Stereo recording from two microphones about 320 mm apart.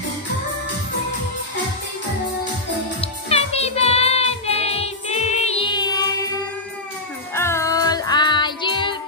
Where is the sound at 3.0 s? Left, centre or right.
Centre.